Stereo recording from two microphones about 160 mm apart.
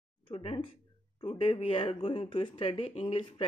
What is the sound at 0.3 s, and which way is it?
Speech, 35° left (ahead or behind).